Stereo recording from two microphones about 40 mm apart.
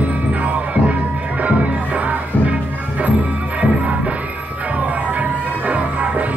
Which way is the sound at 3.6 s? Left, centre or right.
Right.